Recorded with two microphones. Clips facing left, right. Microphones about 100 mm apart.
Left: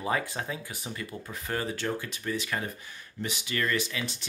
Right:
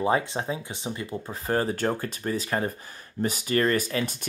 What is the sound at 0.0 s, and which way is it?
Speech, 25° right (ahead or behind).